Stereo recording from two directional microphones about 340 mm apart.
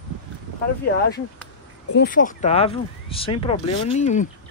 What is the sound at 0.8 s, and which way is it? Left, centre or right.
Speech, left.